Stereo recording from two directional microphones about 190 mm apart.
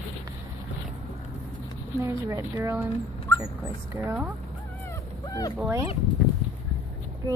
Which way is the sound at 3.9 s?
15° right (ahead or behind).